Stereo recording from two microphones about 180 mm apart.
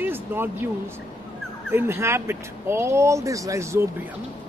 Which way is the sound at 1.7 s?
15° right (ahead or behind).